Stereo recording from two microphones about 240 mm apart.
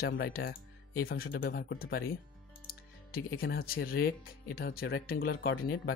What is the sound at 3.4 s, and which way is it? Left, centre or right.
Speech, left.